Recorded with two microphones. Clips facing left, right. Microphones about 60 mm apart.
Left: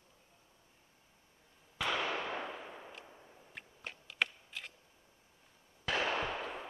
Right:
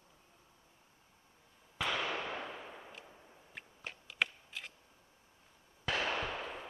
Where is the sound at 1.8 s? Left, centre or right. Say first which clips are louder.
Left 1 dB; centre.